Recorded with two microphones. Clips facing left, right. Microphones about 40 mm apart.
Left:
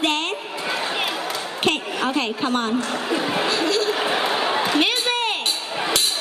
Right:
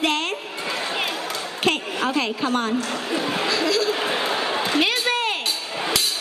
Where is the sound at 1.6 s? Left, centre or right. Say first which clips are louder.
Even; left.